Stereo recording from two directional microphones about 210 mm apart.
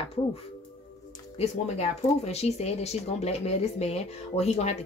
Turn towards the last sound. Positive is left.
turn(degrees=30)  # may be behind; listen again after turning